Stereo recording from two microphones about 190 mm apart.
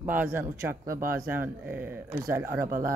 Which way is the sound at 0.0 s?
10° right (ahead or behind).